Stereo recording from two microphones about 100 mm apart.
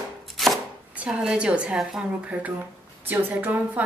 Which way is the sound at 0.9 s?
10° right (ahead or behind).